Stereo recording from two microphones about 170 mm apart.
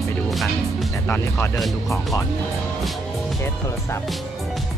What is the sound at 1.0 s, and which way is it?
Speech, 10° left (ahead or behind).